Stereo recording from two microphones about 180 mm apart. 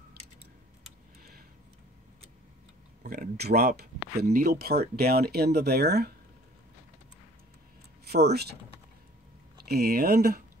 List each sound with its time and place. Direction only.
3.0 s speech: 55° right (ahead or behind)
8.0 s speech: 65° right (ahead or behind)
9.7 s speech: 60° right (ahead or behind)